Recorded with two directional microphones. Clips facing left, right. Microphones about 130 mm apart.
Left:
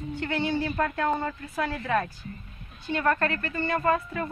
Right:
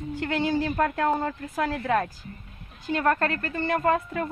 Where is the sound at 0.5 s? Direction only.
45° right (ahead or behind).